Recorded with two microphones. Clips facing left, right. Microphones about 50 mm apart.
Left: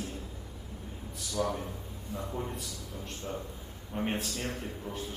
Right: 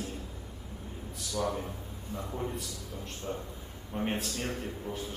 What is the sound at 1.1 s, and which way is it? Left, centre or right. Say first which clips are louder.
A man's voice: even; centre.